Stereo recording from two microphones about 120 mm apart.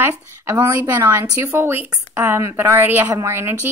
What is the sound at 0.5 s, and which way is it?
Speech, 20° right (ahead or behind).